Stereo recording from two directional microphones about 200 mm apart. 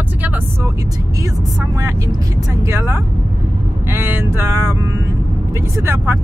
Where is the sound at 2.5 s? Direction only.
15° right (ahead or behind).